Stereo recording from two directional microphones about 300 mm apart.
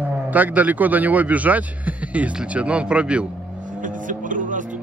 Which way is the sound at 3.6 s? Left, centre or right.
Right.